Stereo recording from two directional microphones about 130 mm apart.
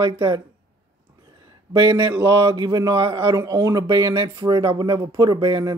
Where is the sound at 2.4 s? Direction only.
35° right (ahead or behind).